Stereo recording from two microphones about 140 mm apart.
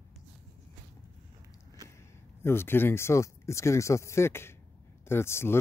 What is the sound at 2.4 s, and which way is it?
Speech, 15° left (ahead or behind).